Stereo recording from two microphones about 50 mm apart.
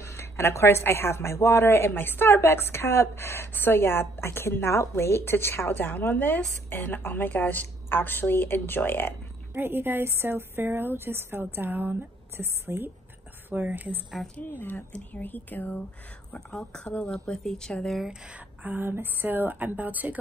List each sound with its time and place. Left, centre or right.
0.0 s speech: left
3.5 s a woman's voice: left
9.5 s a woman's voice: right
12.4 s a woman's voice: right
13.5 s a woman's voice: right
14.2 s speech: centre
14.6 s a woman's voice: left
14.9 s a woman's voice: left
16.7 s speech: left
17.1 s speech: centre
18.6 s a woman's voice: right